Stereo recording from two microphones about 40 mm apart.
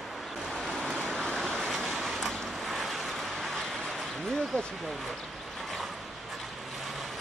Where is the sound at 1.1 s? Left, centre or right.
Centre.